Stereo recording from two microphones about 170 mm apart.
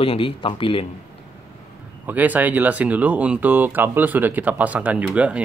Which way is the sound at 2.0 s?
10° right (ahead or behind).